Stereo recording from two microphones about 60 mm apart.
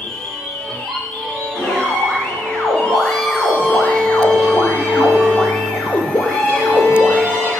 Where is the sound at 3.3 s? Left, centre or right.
Left.